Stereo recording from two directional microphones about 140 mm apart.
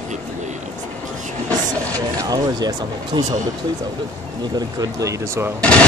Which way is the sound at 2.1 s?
25° right (ahead or behind).